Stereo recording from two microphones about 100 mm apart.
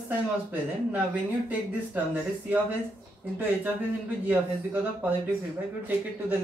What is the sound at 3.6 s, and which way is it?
A man's voice, 15° right (ahead or behind).